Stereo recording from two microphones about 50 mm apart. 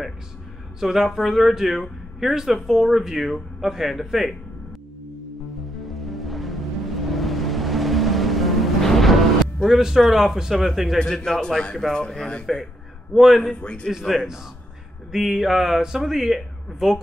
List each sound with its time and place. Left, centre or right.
0.7 s a man's voice: centre
5.9 s music: centre
10.5 s speech: centre
11.0 s speech: centre
13.1 s speech: centre
13.4 s a man's voice: left
13.8 s a man's voice: centre